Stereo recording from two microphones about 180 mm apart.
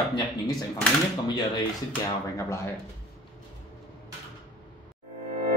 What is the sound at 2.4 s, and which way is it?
Speech, 15° left (ahead or behind).